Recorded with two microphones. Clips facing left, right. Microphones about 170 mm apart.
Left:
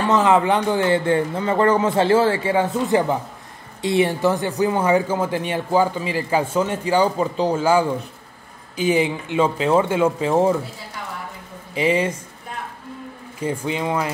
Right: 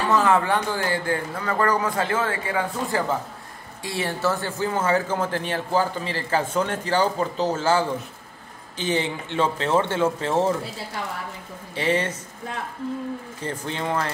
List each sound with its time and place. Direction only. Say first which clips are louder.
0.1 s a man's voice: left 3 dB; 20° left (ahead or behind)
11.9 s a man's voice: left 2 dB; 10° left (ahead or behind)
13.4 s a man's voice: left 8 dB; 10° left (ahead or behind)